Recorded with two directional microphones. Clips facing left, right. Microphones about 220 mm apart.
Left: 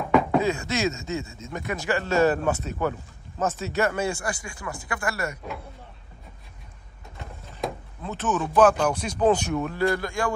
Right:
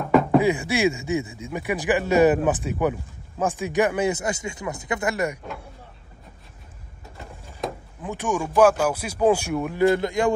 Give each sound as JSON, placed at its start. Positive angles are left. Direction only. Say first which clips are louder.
{"t": 0.0, "sound": "music", "louder": "right 3 dB", "side_deg": 0}
{"t": 0.4, "sound": "speech", "louder": "right 4 dB", "side_deg": -15}
{"t": 7.6, "sound": "door", "louder": "even", "side_deg": 0}
{"t": 8.0, "sound": "speech", "louder": "right 1 dB", "side_deg": -15}